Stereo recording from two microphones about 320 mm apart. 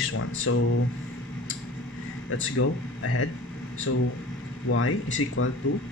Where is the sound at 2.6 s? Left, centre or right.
Left.